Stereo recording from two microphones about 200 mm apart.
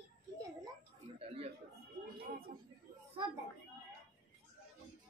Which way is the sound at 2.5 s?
50° right (ahead or behind).